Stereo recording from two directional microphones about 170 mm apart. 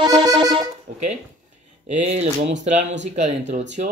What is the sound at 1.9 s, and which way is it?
Speech, 40° right (ahead or behind).